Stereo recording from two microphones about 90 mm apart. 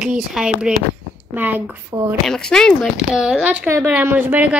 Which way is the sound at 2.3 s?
10° left (ahead or behind).